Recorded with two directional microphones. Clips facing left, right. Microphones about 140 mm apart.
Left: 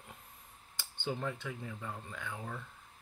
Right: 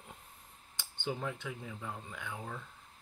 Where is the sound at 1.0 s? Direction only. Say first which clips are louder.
Even; 5° right (ahead or behind).